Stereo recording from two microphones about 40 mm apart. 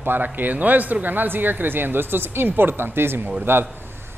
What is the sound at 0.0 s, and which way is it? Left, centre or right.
A man's voice, right.